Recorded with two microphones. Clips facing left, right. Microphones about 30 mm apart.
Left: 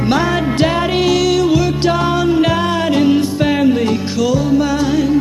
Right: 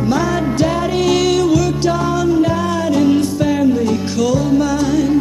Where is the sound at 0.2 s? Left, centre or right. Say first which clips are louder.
Left 1 dB; left.